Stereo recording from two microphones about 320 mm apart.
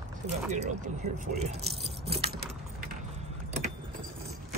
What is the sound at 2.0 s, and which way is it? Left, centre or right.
Keys jangling, centre.